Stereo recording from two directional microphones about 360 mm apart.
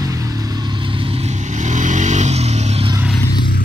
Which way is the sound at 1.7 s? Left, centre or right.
Centre.